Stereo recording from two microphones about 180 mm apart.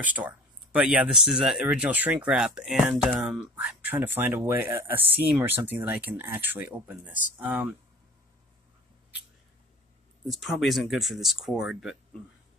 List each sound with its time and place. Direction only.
0.0 s speech: 10° right (ahead or behind)
10.2 s speech: centre (ahead or behind)